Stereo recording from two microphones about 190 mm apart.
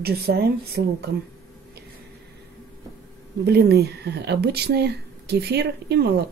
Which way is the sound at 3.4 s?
60° right (ahead or behind).